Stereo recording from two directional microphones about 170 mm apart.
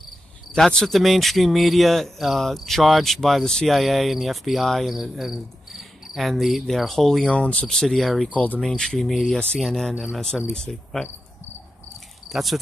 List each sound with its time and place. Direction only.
0.5 s speech: 5° left (ahead or behind)
12.3 s speech: centre (ahead or behind)